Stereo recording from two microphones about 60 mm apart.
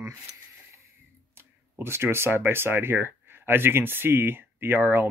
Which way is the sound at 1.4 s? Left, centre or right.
Right.